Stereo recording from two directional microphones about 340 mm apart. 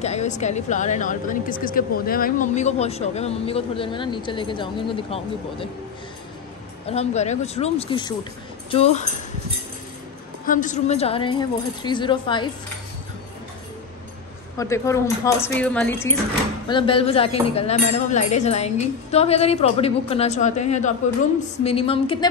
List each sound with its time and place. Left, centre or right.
0.0 s speech: centre
6.9 s speech: centre
10.4 s a woman's voice: left
14.6 s a woman's voice: centre